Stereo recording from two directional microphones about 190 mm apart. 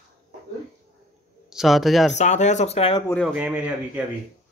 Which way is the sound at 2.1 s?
40° left (ahead or behind).